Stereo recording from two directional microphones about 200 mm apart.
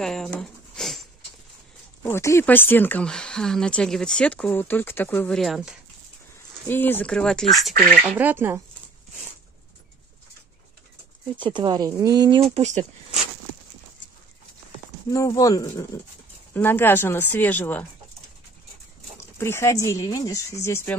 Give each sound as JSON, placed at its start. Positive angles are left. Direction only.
{"t": 0.0, "sound": "a sound", "side_deg": 0}
{"t": 2.0, "sound": "speech", "side_deg": 15}
{"t": 6.7, "sound": "speech", "side_deg": 10}
{"t": 8.2, "sound": "speech", "side_deg": -10}
{"t": 11.3, "sound": "speech", "side_deg": -25}
{"t": 15.0, "sound": "speech", "side_deg": 15}
{"t": 19.3, "sound": "speech", "side_deg": 10}